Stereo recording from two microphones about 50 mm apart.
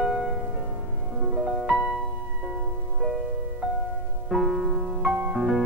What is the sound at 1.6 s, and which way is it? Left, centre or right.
Music, centre.